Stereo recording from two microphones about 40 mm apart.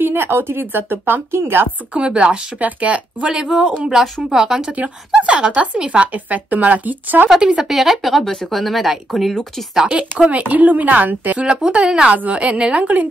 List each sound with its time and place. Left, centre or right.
0.0 s a woman's voice: right
2.0 s speech: right
3.3 s speech: centre
5.1 s speech: right
6.1 s speech: right
7.6 s speech: centre
9.9 s speech: right
11.4 s speech: right
12.1 s speech: right